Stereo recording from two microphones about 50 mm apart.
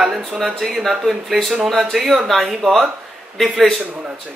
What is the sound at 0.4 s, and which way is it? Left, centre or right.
Speech, centre.